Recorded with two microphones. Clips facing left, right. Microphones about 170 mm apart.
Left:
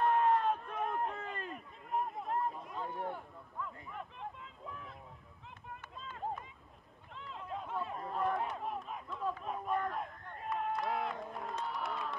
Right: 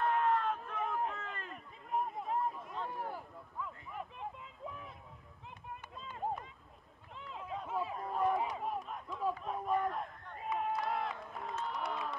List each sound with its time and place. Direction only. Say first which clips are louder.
0.0 s run: left 2 dB; 20° left (ahead or behind)
0.6 s run: even; centre (ahead or behind)
1.5 s a sound: right 3 dB; centre (ahead or behind)
6.0 s a sound: right 2 dB; 15° right (ahead or behind)
9.4 s run: right 2 dB; centre (ahead or behind)
11.3 s crowd: even; centre (ahead or behind)